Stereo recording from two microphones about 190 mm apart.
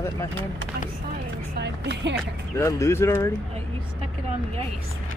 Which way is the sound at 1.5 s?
65° right (ahead or behind).